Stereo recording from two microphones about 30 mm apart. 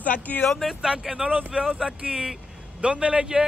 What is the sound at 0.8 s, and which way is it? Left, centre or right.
Speech, right.